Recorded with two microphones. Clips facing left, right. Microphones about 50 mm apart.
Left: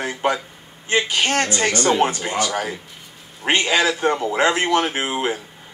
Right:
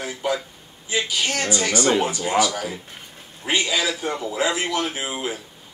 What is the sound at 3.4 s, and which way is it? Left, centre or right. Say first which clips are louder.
Speech: left 4 dB; left.